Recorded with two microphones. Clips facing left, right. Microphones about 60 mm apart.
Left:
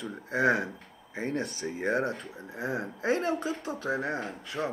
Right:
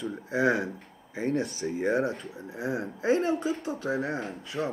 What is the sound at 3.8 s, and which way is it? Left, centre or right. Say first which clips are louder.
Speech: right 1 dB; left.